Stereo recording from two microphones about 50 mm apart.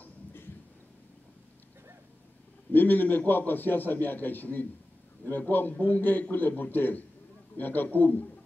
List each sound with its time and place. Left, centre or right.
2.7 s a man's voice: left